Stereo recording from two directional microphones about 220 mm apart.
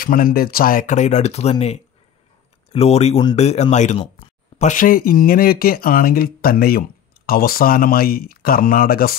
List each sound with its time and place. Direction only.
0.0 s speech: 40° left (ahead or behind)